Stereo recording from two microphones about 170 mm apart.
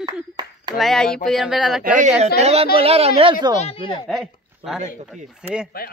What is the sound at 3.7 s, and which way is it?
Speech, 30° left (ahead or behind).